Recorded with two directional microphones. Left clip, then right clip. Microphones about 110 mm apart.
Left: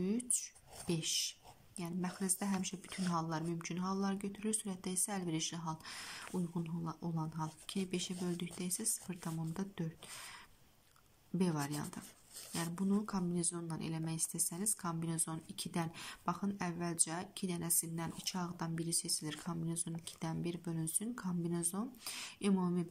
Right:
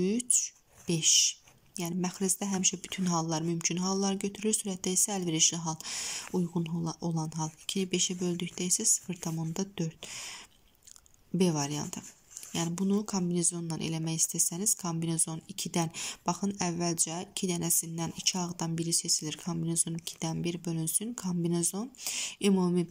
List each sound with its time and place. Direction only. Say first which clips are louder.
0.0 s speech: right 10 dB; 20° right (ahead or behind)
11.3 s speech: right 8 dB; 20° right (ahead or behind)